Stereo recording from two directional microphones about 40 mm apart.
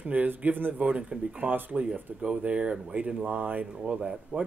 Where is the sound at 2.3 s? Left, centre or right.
Right.